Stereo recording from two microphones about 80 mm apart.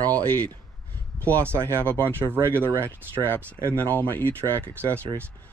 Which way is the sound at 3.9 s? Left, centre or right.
Left.